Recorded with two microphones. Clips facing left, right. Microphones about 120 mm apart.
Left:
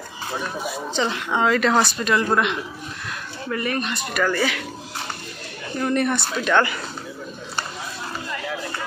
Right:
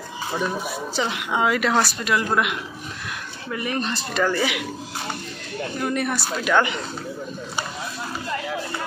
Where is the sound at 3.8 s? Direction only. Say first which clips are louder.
Even; 30° right (ahead or behind).